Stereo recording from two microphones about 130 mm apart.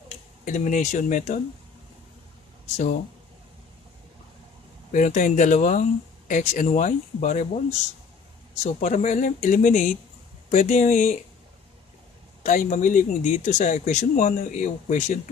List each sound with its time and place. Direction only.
0.5 s speech: 75° left (ahead or behind)
4.9 s speech: 70° left (ahead or behind)
8.6 s speech: 70° left (ahead or behind)
10.5 s speech: 65° left (ahead or behind)
12.4 s speech: 75° left (ahead or behind)